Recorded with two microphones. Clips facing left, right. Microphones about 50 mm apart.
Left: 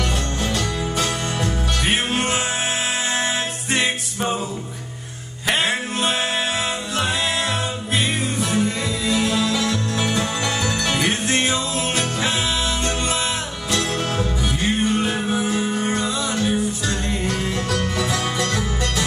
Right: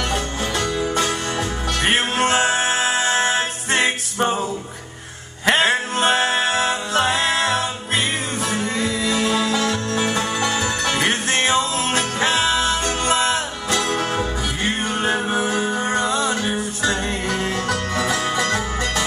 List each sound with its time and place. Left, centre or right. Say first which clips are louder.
1.8 s music: right 4 dB; right
5.5 s music: right 4 dB; right
13.8 s music: right 2 dB; centre
14.6 s music: left 2 dB; right